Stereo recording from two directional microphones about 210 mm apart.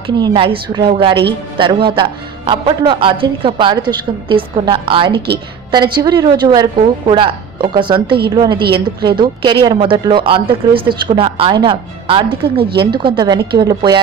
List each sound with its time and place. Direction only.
0.0 s a woman's voice: 25° right (ahead or behind)